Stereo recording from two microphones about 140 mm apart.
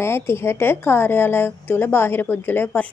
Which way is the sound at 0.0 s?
20° left (ahead or behind).